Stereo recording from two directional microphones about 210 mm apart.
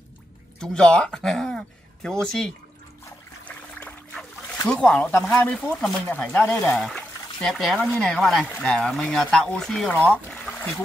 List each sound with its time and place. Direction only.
0.6 s speech: 5° left (ahead or behind)